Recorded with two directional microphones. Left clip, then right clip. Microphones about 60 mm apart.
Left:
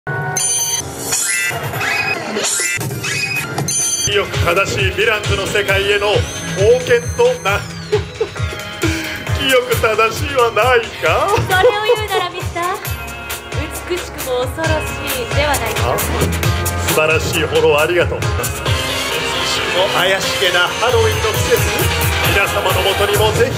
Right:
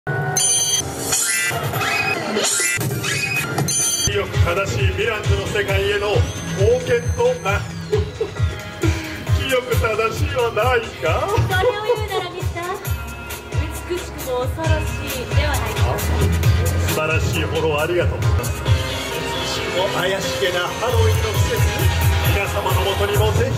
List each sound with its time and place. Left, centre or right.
0.1 s music: centre
4.1 s speech: left
9.4 s speech: left
14.6 s speech: left